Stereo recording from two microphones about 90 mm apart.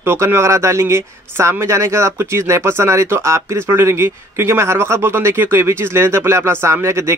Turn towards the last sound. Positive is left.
turn(degrees=-30)  # may be behind; listen again after turning